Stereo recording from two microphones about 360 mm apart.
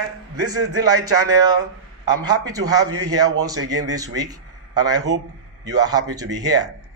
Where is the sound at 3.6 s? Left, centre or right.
Right.